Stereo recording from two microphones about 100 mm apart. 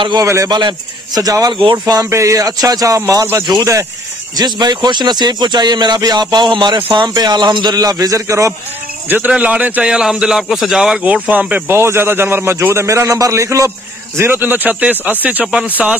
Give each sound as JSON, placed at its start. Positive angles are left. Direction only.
{"t": 0.2, "sound": "speech", "side_deg": -30}
{"t": 0.5, "sound": "speech", "side_deg": -50}
{"t": 1.5, "sound": "speech", "side_deg": -55}
{"t": 9.3, "sound": "a man's voice", "side_deg": -15}